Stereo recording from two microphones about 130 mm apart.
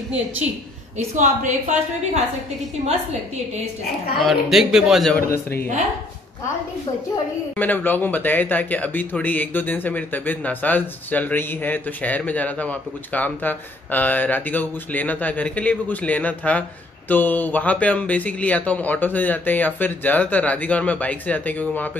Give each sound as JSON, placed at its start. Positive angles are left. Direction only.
{"t": 0.9, "sound": "a woman's voice", "side_deg": -70}
{"t": 4.2, "sound": "a man's voice", "side_deg": 0}
{"t": 5.3, "sound": "speech", "side_deg": 15}
{"t": 7.5, "sound": "speech", "side_deg": 15}